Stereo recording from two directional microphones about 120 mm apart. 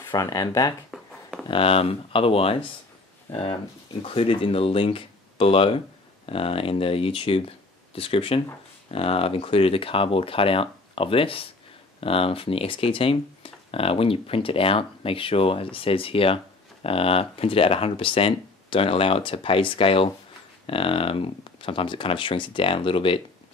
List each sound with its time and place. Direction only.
0.1 s speech: 30° left (ahead or behind)
1.5 s speech: 50° left (ahead or behind)